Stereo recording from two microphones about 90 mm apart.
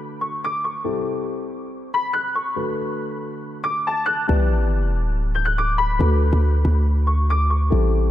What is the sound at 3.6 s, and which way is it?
Music, centre (ahead or behind).